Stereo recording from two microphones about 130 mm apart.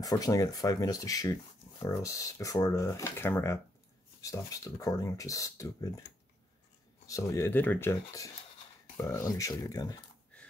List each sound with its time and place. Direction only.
0.0 s speech: 25° left (ahead or behind)
7.1 s speech: 25° left (ahead or behind)